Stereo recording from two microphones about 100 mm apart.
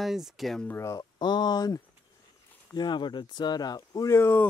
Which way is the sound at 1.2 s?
45° left (ahead or behind).